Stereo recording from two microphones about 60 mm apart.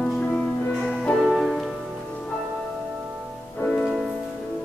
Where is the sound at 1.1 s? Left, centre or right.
Centre.